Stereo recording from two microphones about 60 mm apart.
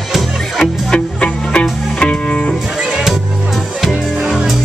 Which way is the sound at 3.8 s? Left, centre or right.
Centre.